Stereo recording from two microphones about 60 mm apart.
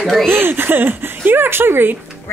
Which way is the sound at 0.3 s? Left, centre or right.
Right.